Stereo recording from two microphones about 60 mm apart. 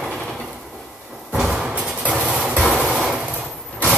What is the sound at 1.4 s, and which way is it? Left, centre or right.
Music, centre.